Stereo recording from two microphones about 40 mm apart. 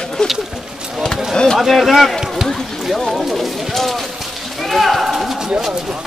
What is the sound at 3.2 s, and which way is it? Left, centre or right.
Speech, centre.